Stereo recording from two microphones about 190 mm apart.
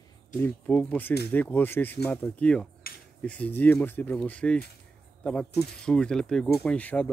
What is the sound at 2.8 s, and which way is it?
Finger snapping, 55° left (ahead or behind).